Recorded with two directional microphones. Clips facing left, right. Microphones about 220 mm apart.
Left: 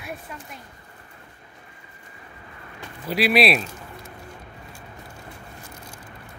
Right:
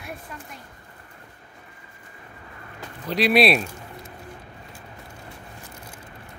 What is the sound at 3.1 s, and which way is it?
Speech, 5° left (ahead or behind).